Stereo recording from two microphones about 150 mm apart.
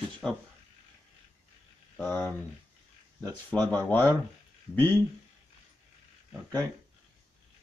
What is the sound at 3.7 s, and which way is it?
Speech, 10° left (ahead or behind).